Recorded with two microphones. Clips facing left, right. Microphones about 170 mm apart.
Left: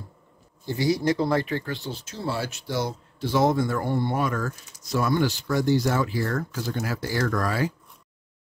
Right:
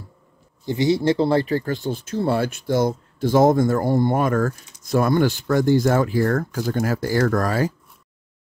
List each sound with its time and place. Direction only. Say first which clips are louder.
0.7 s speech: right 4 dB; 25° right (ahead or behind); by 7.7 s 45° right (ahead or behind)